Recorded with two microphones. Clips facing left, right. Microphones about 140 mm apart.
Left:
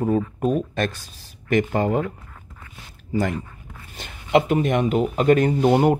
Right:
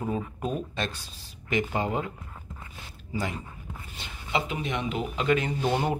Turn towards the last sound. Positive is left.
turn(degrees=50)  # may be behind; listen again after turning